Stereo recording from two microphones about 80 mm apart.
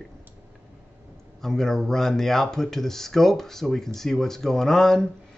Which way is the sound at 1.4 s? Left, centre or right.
Centre.